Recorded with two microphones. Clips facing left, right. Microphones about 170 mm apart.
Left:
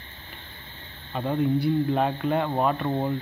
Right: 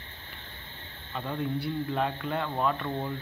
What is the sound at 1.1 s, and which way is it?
Speech, 35° left (ahead or behind).